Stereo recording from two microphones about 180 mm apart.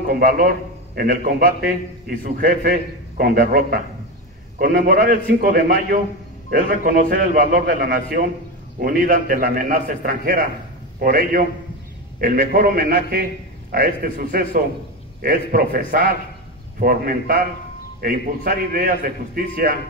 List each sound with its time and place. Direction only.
0.1 s a man's voice: 50° right (ahead or behind)